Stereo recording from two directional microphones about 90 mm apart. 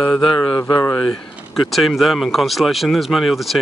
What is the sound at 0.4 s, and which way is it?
Speech, 45° left (ahead or behind).